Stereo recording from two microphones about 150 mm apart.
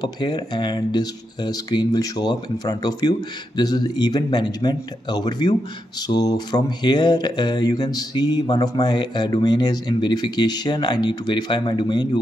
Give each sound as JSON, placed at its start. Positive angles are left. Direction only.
{"t": 0.0, "sound": "speech", "side_deg": 30}